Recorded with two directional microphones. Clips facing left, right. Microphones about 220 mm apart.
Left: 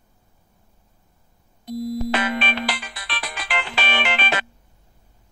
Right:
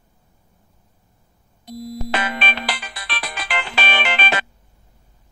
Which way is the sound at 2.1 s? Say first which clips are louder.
Left 2 dB; 35° right (ahead or behind).